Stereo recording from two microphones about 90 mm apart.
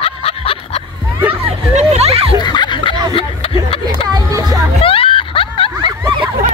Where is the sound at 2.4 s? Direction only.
55° left (ahead or behind).